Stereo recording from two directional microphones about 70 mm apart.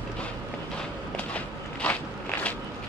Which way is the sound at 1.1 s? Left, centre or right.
Centre.